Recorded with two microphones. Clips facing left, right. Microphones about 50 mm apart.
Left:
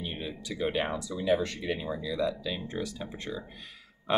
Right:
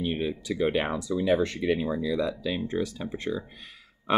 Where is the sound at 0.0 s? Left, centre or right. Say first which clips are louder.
Right 8 dB; right.